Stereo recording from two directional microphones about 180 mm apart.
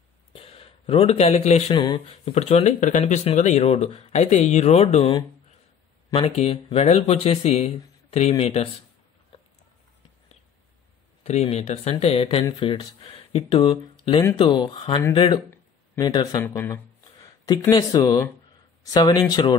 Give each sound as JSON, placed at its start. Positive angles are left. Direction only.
{"t": 0.3, "sound": "a sound", "side_deg": 35}
{"t": 1.7, "sound": "speech", "side_deg": 25}
{"t": 2.3, "sound": "speech", "side_deg": 35}
{"t": 11.2, "sound": "speech", "side_deg": 35}